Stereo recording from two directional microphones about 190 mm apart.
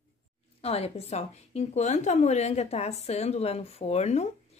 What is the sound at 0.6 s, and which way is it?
Speech, 30° left (ahead or behind).